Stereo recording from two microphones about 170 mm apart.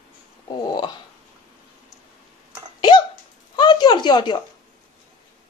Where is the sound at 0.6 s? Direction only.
25° left (ahead or behind).